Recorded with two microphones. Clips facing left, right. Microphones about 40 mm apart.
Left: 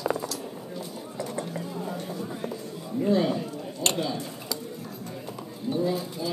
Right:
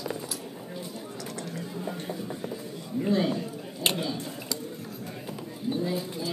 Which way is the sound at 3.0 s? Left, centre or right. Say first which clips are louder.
Left 2 dB; centre.